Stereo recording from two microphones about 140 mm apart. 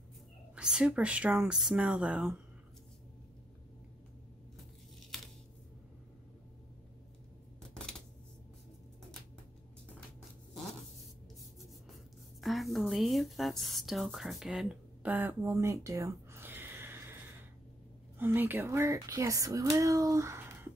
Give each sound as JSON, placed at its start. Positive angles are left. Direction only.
{"t": 0.6, "sound": "speech", "side_deg": -5}
{"t": 12.4, "sound": "speech", "side_deg": 0}
{"t": 18.2, "sound": "speech", "side_deg": -15}